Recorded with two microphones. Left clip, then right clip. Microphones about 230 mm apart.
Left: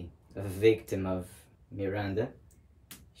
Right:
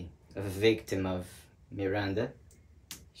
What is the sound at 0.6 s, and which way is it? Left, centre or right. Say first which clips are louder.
Speech: left 2 dB; centre.